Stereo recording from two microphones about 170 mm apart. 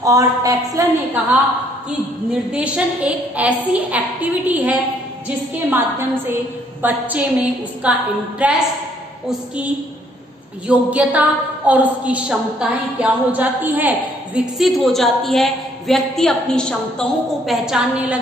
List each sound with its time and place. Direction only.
0.0 s a woman's voice: 20° right (ahead or behind)
2.5 s a woman's voice: 5° right (ahead or behind)
6.8 s a woman's voice: 10° right (ahead or behind)
10.7 s a woman's voice: 10° right (ahead or behind)